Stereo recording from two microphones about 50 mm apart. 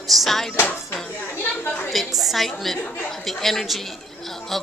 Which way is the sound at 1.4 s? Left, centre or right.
Left.